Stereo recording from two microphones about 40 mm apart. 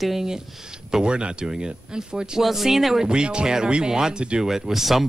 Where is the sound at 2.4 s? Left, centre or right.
Centre.